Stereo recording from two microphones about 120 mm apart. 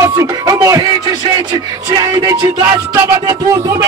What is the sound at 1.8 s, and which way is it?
Music, 30° right (ahead or behind).